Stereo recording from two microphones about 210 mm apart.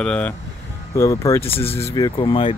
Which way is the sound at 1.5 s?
25° left (ahead or behind).